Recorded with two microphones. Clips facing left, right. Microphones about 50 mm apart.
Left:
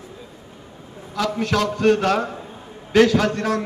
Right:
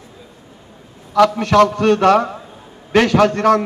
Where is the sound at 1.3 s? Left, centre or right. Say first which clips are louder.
Right 8 dB; right.